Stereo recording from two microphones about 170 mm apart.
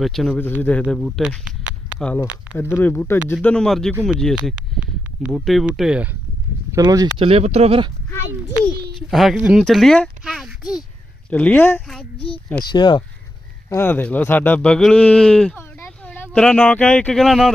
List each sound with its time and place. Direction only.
0.0 s speech: centre (ahead or behind)
2.5 s speech: 15° left (ahead or behind); by 6.0 s 5° right (ahead or behind)
6.7 s speech: 20° right (ahead or behind)
7.2 s speech: 35° right (ahead or behind)
9.1 s a child's voice: centre (ahead or behind)
12.7 s speech: 25° left (ahead or behind)
13.7 s speech: 10° left (ahead or behind)